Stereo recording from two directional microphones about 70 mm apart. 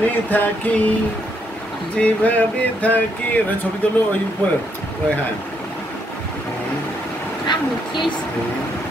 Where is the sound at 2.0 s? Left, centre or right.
Left.